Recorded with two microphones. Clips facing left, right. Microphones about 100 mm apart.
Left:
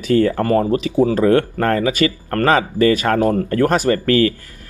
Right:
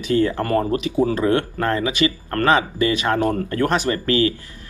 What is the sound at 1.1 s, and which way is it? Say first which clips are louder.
Speech: left 5 dB; 40° left (ahead or behind).